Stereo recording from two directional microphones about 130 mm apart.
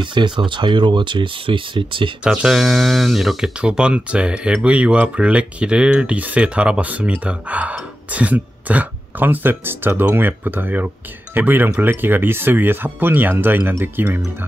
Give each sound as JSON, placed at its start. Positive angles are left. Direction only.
{"t": 0.0, "sound": "speech", "side_deg": -35}
{"t": 2.2, "sound": "speech", "side_deg": -5}